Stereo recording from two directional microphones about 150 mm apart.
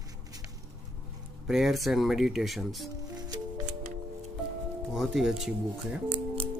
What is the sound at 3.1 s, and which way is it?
Music, 25° right (ahead or behind).